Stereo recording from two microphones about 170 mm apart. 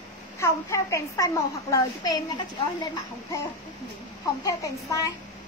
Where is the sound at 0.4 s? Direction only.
20° left (ahead or behind).